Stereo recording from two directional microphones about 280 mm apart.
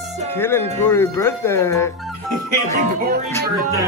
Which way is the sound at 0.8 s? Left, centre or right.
Centre.